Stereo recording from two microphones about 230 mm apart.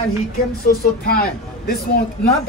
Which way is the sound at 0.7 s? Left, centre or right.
Left.